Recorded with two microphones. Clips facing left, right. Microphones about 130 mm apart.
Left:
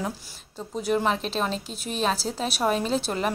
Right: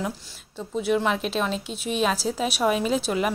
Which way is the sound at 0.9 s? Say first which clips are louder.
Even; 35° left (ahead or behind).